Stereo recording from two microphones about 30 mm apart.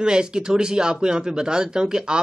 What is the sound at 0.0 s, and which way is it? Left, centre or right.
Speech, right.